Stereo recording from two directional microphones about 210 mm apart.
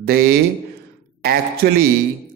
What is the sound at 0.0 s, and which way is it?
Music, 45° right (ahead or behind).